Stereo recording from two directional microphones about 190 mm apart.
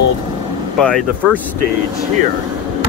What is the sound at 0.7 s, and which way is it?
Speech, 5° left (ahead or behind).